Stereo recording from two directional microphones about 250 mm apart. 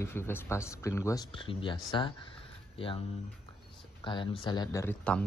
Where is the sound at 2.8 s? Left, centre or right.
Left.